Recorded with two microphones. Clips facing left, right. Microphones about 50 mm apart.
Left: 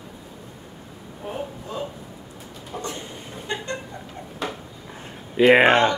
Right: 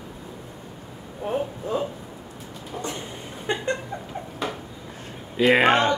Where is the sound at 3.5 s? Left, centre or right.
Right.